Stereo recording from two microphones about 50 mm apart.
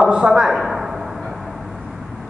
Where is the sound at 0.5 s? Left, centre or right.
Centre.